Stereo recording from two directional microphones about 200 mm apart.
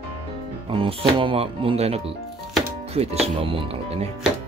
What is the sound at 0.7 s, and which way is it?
Speech, 30° right (ahead or behind).